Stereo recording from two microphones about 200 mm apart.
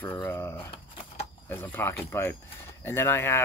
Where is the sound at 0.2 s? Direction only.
10° left (ahead or behind).